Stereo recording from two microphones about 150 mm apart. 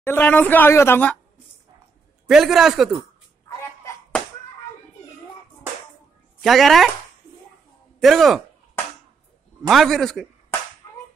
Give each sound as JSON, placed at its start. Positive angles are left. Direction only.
{"t": 0.0, "sound": "a woman's voice", "side_deg": 10}
{"t": 2.2, "sound": "a man's voice", "side_deg": -5}
{"t": 3.4, "sound": "a sound", "side_deg": 20}
{"t": 6.4, "sound": "a man's voice", "side_deg": 0}
{"t": 8.0, "sound": "a man's voice", "side_deg": 0}
{"t": 9.6, "sound": "a man's voice", "side_deg": 0}